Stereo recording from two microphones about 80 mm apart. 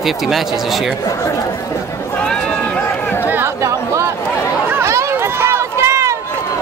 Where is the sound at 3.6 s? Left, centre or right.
Right.